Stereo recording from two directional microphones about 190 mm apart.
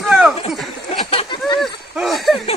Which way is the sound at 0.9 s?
30° left (ahead or behind).